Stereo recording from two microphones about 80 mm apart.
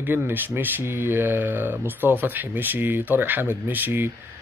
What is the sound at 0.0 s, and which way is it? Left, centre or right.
Speech, right.